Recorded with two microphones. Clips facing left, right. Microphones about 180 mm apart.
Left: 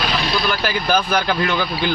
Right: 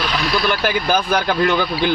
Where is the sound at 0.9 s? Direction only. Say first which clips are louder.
Left 1 dB; 15° right (ahead or behind).